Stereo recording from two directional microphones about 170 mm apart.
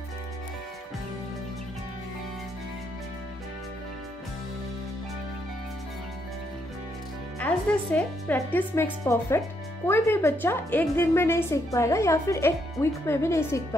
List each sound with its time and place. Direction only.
7.3 s a woman's voice: 10° left (ahead or behind)